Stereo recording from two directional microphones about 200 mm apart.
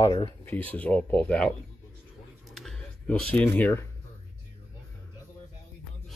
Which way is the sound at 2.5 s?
Centre (ahead or behind).